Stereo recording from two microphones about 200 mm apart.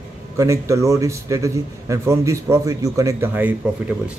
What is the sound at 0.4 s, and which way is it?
A man's voice, 15° right (ahead or behind).